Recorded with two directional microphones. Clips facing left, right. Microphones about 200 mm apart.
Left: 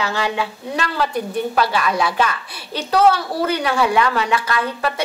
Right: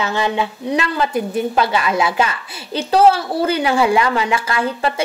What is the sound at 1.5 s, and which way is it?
A woman's voice, 25° right (ahead or behind).